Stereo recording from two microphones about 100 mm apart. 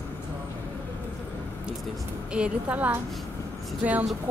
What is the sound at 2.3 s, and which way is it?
Speech, 10° right (ahead or behind).